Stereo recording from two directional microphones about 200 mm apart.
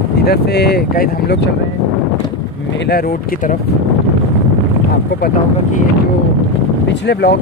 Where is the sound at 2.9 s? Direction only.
50° left (ahead or behind).